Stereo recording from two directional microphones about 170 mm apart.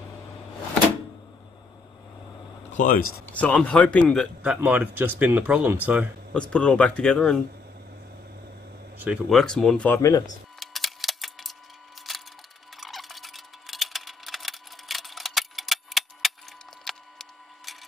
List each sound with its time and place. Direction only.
2.7 s speech: 50° left (ahead or behind)
3.3 s speech: 10° left (ahead or behind)
4.4 s speech: 10° right (ahead or behind)
6.3 s speech: 5° left (ahead or behind)
8.9 s a sound: 10° right (ahead or behind)
9.3 s speech: 5° left (ahead or behind)
10.6 s a sound: centre (ahead or behind)